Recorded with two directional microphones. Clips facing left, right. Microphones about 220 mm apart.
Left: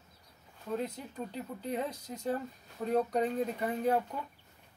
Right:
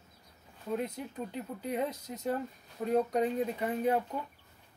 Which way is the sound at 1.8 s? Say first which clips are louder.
Right 2 dB; 20° right (ahead or behind).